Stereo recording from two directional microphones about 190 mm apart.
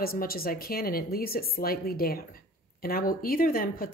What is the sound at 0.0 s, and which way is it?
A woman's voice, 50° left (ahead or behind).